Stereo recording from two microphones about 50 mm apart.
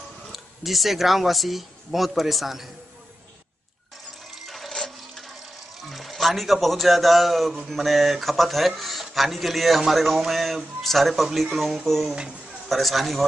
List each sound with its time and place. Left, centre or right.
0.3 s speech: centre
4.5 s water: centre
5.8 s speech: centre
12.1 s speech: centre
12.6 s speech: centre